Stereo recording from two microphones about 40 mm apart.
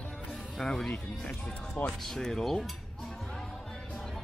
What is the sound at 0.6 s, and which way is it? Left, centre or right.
Speech, centre.